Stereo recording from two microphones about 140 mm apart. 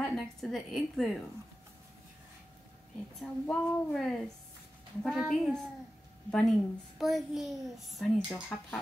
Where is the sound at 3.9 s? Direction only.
5° left (ahead or behind).